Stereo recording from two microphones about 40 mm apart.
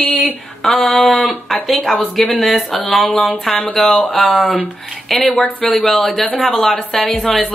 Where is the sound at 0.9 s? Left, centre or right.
Left.